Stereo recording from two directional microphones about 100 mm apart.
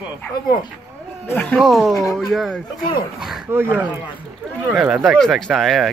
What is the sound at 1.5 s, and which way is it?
Speech, 5° right (ahead or behind).